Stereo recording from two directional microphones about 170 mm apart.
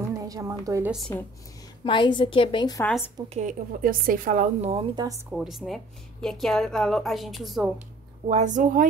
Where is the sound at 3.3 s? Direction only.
50° right (ahead or behind).